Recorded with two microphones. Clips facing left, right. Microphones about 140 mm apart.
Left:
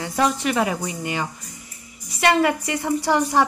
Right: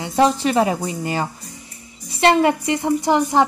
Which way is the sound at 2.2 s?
25° right (ahead or behind).